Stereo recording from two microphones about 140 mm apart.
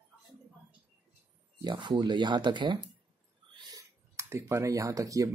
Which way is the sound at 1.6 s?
35° right (ahead or behind).